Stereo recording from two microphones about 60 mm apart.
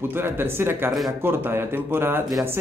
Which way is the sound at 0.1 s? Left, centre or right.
Right.